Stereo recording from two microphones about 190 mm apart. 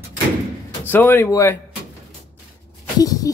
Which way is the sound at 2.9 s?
20° left (ahead or behind).